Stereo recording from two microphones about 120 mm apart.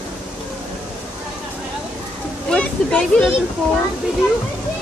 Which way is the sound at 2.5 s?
10° left (ahead or behind).